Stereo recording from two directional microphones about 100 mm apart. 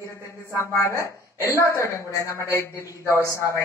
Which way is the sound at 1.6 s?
30° left (ahead or behind).